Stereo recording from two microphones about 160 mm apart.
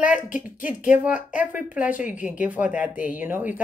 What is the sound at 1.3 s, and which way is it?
Speech, 10° right (ahead or behind).